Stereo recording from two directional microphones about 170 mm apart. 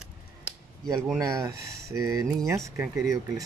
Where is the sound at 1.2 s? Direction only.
20° right (ahead or behind).